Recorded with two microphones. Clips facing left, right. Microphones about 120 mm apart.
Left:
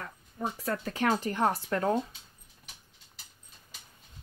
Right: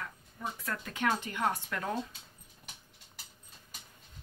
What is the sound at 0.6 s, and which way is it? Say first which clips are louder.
Speech: left 5 dB; 35° left (ahead or behind).